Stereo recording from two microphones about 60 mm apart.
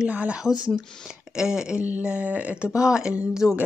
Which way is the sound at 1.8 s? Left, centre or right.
Right.